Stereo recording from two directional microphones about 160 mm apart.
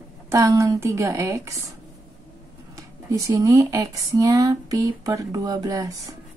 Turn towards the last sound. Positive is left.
turn(degrees=-20)  # may be behind; listen again after turning